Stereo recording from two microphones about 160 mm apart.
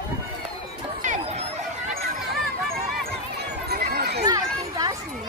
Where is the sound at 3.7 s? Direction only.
70° right (ahead or behind).